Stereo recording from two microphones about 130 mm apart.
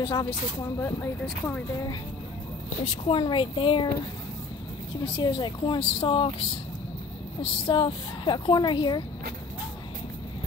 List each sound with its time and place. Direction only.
0.0 s a woman's voice: 30° left (ahead or behind)
3.1 s a woman's voice: 40° left (ahead or behind)
5.0 s a woman's voice: 35° left (ahead or behind)
7.4 s a woman's voice: 45° left (ahead or behind)